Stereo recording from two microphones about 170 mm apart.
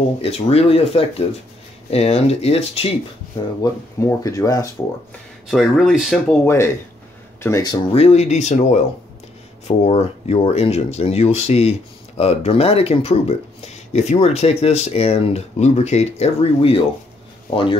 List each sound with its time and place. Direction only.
0.2 s speech: 35° left (ahead or behind)
3.6 s speech: 20° left (ahead or behind)
5.5 s speech: centre (ahead or behind)
6.4 s speech: 15° left (ahead or behind)
7.9 s speech: 35° left (ahead or behind)